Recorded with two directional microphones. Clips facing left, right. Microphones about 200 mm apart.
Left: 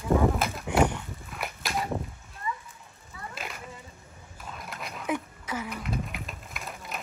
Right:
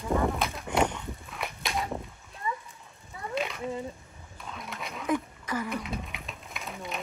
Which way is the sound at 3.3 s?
Centre (ahead or behind).